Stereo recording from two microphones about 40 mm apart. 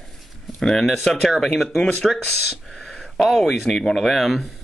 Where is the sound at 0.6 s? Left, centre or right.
Centre.